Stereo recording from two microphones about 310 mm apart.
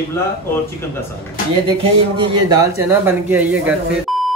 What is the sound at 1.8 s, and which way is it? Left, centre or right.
Speech, centre.